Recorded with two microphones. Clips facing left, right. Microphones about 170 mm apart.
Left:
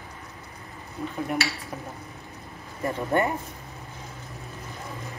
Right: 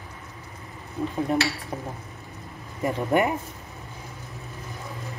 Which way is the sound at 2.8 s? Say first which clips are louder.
Right 2 dB; 15° right (ahead or behind).